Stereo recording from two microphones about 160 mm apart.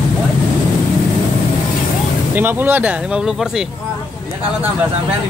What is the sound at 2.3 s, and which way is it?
Speech, 10° right (ahead or behind).